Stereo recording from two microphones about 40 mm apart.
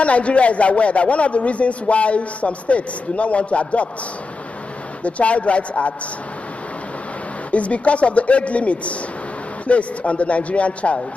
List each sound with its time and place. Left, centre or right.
0.0 s a man's voice: left
5.0 s a man's voice: left
7.5 s a man's voice: left